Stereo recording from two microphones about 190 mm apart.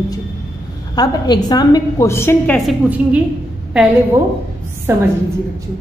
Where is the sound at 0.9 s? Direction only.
20° left (ahead or behind).